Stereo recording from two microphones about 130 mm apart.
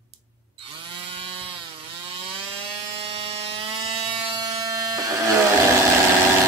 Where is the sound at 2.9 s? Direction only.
50° right (ahead or behind); by 5.3 s 30° right (ahead or behind).